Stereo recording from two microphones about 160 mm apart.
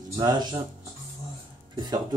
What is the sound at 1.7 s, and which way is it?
Speech, 25° right (ahead or behind).